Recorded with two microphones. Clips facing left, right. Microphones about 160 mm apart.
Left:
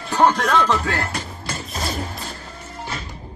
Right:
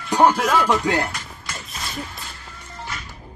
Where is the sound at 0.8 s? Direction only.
20° right (ahead or behind).